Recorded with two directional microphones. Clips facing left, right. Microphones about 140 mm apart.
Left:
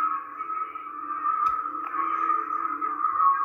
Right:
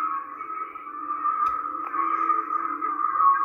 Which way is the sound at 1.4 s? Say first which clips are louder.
Even; 45° right (ahead or behind).